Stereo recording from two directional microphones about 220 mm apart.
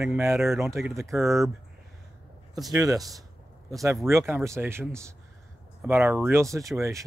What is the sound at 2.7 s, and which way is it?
Speech, 15° right (ahead or behind).